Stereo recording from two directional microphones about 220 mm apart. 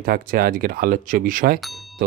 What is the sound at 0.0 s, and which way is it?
Speech, 40° right (ahead or behind).